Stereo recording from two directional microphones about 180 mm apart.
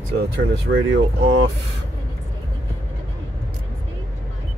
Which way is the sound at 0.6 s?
90° right.